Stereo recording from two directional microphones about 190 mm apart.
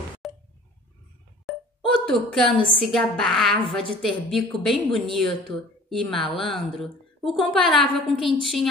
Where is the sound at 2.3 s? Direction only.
Centre (ahead or behind).